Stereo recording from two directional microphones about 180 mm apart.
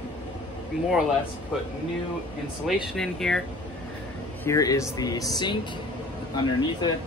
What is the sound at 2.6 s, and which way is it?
Speech, centre (ahead or behind).